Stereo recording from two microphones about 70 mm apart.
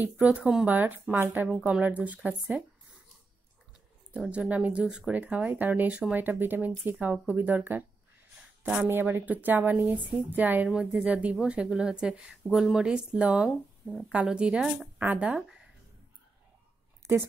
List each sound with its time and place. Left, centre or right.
0.0 s speech: centre
4.3 s speech: centre
9.1 s speech: right
10.7 s a woman's voice: centre
13.8 s a woman's voice: centre
14.1 s a woman's voice: centre
17.0 s speech: right